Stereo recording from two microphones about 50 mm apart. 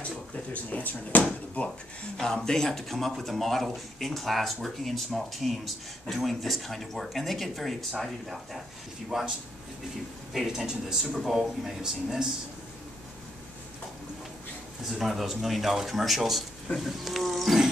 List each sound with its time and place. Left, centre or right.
0.5 s speech: left
2.1 s speech: centre
9.1 s speech: centre
10.3 s speech: centre
14.8 s speech: centre